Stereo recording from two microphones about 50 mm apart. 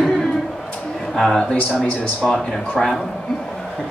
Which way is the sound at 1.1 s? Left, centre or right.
Centre.